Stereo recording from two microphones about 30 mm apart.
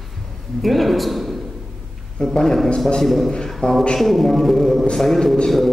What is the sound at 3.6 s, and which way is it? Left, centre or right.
Speech, left.